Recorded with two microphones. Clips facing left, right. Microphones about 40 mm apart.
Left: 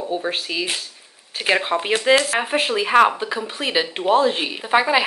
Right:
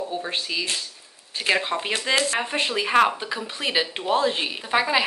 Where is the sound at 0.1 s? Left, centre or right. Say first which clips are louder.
Left 4 dB; centre.